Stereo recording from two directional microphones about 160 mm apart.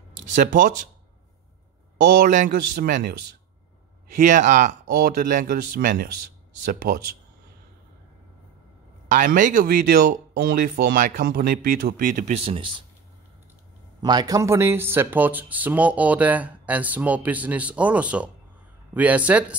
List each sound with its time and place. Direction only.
0.4 s speech: 55° right (ahead or behind)
2.1 s speech: 55° right (ahead or behind)
4.2 s speech: 50° right (ahead or behind)
4.9 s speech: 70° right (ahead or behind)
9.1 s speech: 55° right (ahead or behind); by 12.8 s 35° right (ahead or behind)
14.0 s speech: 25° right (ahead or behind); by 19.5 s 10° right (ahead or behind)